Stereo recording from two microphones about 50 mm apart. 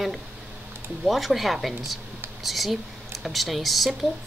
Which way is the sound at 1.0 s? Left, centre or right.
Centre.